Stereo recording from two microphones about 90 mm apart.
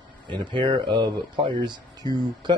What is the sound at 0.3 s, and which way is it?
Speech, 60° right (ahead or behind).